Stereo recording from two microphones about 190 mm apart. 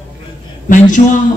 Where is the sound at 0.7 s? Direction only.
45° left (ahead or behind).